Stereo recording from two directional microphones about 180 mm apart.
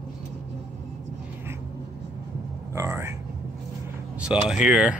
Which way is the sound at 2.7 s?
15° right (ahead or behind).